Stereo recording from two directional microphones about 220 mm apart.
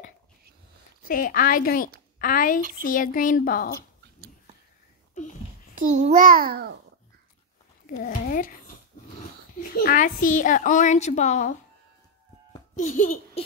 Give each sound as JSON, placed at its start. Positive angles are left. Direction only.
{"t": 1.0, "sound": "a woman's voice", "side_deg": 40}
{"t": 6.0, "sound": "a child's voice", "side_deg": -40}
{"t": 7.8, "sound": "a woman's voice", "side_deg": 40}
{"t": 9.6, "sound": "a woman's voice", "side_deg": 40}
{"t": 12.7, "sound": "a child's voice", "side_deg": 35}